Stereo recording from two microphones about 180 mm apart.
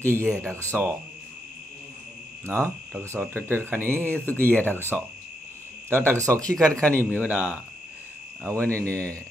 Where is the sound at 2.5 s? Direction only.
15° right (ahead or behind).